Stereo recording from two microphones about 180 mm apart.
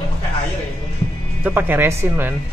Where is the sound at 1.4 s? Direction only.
10° right (ahead or behind).